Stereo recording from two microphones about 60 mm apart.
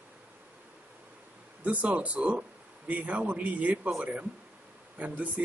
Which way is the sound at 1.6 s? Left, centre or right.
Right.